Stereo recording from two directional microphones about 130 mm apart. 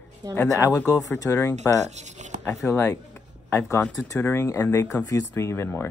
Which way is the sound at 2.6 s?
20° left (ahead or behind).